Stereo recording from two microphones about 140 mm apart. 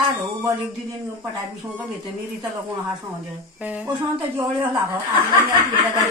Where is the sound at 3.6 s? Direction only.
10° right (ahead or behind).